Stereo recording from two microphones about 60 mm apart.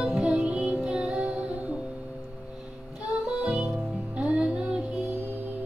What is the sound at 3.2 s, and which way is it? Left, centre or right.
Music, centre.